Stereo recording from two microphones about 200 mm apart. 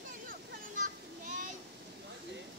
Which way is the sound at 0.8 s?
40° right (ahead or behind).